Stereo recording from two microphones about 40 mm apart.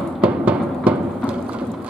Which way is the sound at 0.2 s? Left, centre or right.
Right.